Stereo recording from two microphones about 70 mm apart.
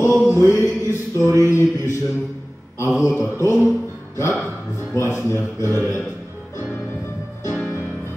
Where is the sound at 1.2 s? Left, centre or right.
Right.